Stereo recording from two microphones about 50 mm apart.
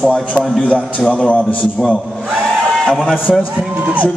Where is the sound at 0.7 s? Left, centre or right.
Left.